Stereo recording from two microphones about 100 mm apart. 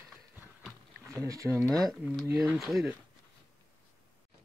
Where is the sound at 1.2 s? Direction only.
35° right (ahead or behind).